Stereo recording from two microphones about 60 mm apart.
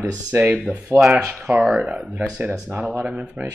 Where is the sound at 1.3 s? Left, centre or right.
Right.